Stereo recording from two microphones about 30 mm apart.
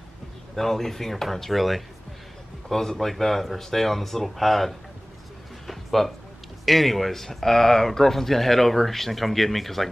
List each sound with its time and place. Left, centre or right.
0.6 s speech: centre
2.7 s speech: centre
5.7 s a sound: centre
6.6 s speech: centre